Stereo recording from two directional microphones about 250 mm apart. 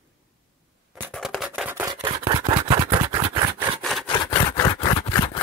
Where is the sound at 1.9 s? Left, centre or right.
Centre.